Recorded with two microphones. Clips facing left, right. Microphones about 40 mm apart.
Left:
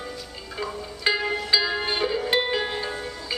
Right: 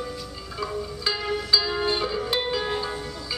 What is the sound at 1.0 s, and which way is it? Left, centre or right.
Music, left.